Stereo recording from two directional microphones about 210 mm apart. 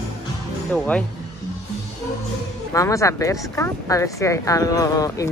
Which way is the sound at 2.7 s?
15° left (ahead or behind).